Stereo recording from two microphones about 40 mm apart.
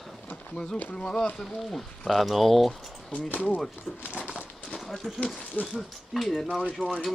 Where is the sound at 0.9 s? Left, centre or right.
Left.